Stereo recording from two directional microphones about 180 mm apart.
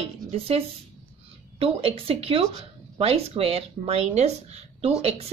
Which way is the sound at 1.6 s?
30° right (ahead or behind).